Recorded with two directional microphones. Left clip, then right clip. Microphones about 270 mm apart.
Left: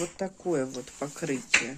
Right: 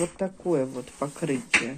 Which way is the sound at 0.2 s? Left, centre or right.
Centre.